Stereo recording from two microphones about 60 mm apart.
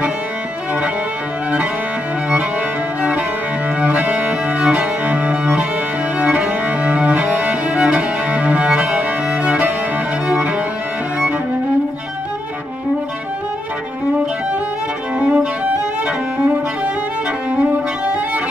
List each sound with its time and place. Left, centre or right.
3.0 s music: right
3.8 s cello: right
10.2 s music: right
15.1 s violin: centre
17.6 s music: right